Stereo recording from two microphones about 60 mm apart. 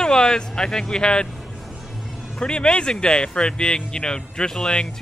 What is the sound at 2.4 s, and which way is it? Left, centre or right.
A man's voice, centre.